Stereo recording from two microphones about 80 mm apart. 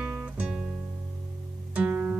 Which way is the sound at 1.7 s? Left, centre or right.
Right.